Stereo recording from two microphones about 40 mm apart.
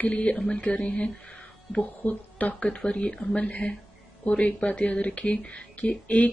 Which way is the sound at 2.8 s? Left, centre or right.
Left.